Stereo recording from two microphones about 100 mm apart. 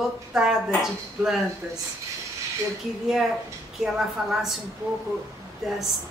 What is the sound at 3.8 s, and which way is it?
Speech, 5° right (ahead or behind).